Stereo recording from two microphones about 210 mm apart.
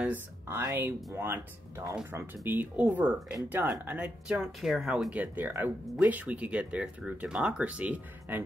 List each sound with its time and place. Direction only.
0.0 s speech: 10° right (ahead or behind)